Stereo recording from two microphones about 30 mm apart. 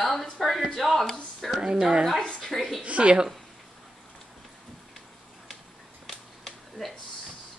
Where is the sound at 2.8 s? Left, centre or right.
Right.